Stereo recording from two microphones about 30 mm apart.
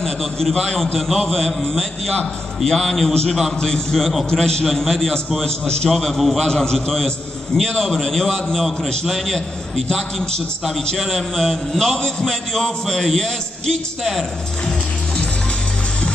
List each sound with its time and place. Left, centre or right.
0.0 s a man's voice: centre
3.5 s a man's voice: left
6.4 s a man's voice: left
11.0 s a man's voice: centre